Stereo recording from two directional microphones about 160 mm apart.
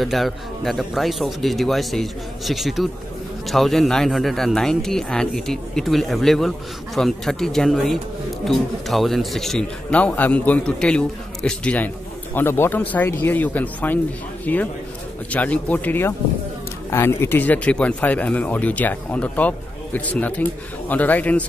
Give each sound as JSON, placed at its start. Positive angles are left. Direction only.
{"t": 0.0, "sound": "speech", "side_deg": 0}